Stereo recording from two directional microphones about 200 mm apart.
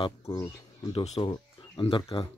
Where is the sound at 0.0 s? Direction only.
25° left (ahead or behind).